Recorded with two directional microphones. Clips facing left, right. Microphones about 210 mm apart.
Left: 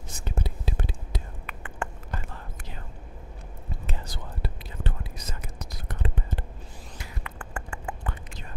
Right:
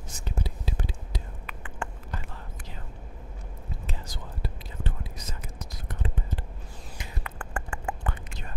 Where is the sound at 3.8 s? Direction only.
60° left (ahead or behind).